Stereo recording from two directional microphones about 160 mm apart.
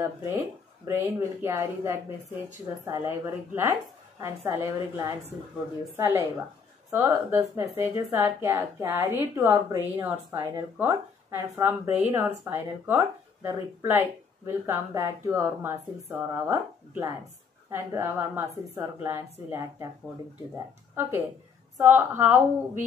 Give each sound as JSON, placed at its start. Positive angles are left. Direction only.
{"t": 0.8, "sound": "speech", "side_deg": -15}